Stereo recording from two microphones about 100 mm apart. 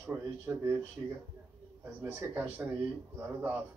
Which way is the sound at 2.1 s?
20° right (ahead or behind).